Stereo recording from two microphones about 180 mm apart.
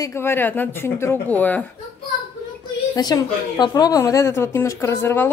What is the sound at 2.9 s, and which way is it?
A woman's voice, 20° left (ahead or behind).